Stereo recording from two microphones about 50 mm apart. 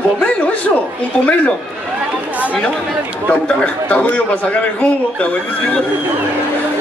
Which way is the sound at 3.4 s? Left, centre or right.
Left.